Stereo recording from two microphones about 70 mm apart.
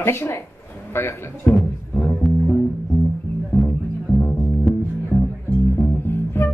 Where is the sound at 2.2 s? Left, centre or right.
Centre.